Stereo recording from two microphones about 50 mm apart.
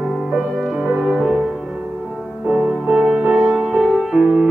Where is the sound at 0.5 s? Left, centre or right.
Centre.